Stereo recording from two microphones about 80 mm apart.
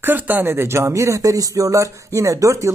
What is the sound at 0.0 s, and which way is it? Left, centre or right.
A man's voice, right.